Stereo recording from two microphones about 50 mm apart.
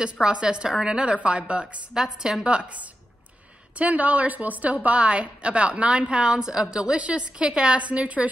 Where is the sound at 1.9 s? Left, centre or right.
Centre.